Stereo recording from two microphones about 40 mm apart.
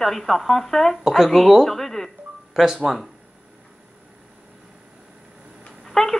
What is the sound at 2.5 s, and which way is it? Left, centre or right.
Speech, centre.